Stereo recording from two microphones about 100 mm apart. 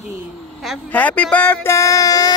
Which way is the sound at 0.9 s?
15° left (ahead or behind).